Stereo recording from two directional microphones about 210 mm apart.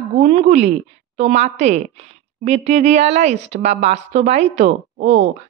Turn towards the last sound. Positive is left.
turn(degrees=-35)  # may be behind; listen again after turning